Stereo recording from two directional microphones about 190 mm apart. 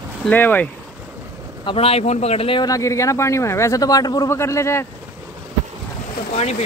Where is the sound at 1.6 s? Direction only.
30° left (ahead or behind); by 4.8 s 15° left (ahead or behind).